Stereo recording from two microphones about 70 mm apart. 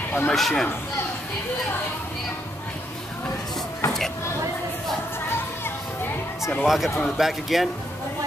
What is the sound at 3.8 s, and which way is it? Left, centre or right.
Vehicle, left.